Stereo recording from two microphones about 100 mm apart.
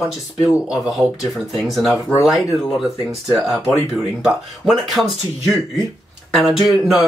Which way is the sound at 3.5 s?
15° right (ahead or behind).